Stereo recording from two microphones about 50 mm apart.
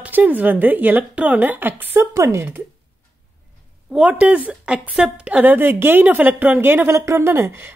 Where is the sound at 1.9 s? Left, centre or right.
Right.